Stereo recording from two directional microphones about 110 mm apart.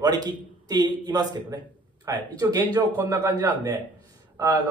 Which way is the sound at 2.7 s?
20° right (ahead or behind).